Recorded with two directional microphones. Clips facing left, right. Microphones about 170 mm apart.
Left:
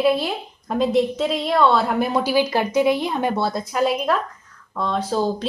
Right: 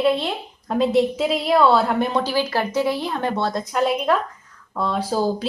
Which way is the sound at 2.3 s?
15° left (ahead or behind).